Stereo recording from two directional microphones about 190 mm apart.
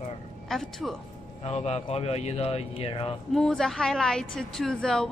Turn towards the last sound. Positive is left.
turn(degrees=5)  # may be behind; listen again after turning